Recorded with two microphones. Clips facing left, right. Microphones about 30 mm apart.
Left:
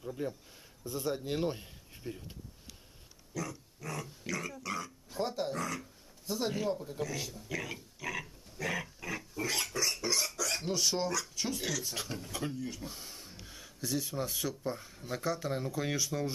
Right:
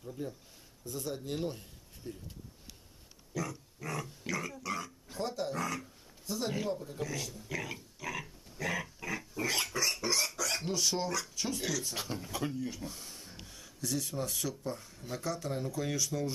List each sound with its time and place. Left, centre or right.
0.0 s a man's voice: left
3.3 s pig: centre
5.2 s speech: centre
5.6 s pig: centre
6.2 s speech: centre
6.7 s pig: centre
12.8 s a sound: centre
13.5 s speech: centre